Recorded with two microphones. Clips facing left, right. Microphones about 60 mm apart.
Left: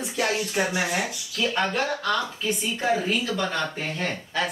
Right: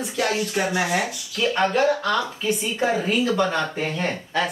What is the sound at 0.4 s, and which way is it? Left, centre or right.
Speech, centre.